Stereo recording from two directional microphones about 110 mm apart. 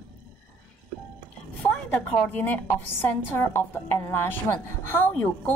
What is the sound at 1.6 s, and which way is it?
A woman's voice, 15° left (ahead or behind).